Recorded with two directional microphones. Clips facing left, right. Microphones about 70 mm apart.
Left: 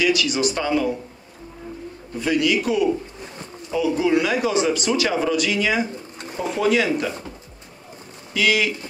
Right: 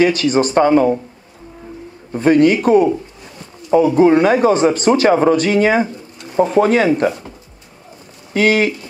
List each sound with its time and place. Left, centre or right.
0.0 s speech: right
2.1 s speech: right
8.3 s speech: right